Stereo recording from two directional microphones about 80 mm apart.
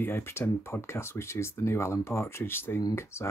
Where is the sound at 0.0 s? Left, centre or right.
Left.